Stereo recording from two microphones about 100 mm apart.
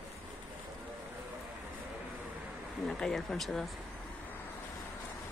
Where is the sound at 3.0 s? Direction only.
5° left (ahead or behind).